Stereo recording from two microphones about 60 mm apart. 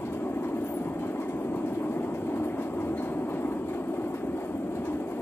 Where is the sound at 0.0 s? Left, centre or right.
Left.